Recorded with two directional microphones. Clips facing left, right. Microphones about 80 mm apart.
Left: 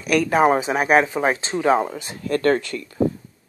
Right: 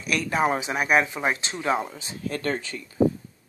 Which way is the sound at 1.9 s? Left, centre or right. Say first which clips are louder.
Left 7 dB; left.